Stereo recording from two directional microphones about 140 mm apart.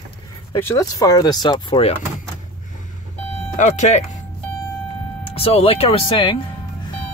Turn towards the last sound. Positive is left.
turn(degrees=40)  # may be behind; listen again after turning